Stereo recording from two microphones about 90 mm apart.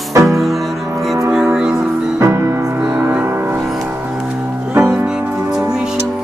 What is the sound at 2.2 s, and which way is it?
Music, 35° right (ahead or behind).